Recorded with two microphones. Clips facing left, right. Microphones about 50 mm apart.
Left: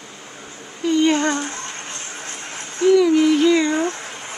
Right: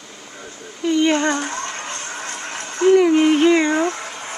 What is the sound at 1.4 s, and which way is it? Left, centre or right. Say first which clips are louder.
Music: right 4 dB; right.